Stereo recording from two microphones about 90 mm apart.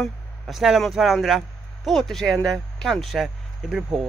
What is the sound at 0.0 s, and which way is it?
Speech, centre (ahead or behind).